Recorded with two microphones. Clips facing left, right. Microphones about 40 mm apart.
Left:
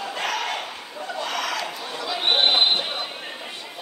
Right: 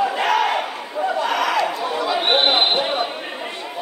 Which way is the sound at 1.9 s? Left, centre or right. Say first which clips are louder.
Right 3 dB; centre.